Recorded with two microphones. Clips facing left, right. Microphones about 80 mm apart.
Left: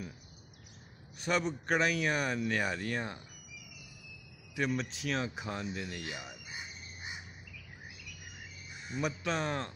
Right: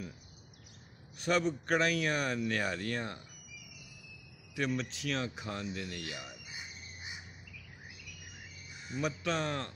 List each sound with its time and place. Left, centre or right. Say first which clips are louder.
1.1 s speech: right 2 dB; centre
4.6 s speech: left 1 dB; centre
6.5 s bird: left 2 dB; left
8.9 s speech: even; centre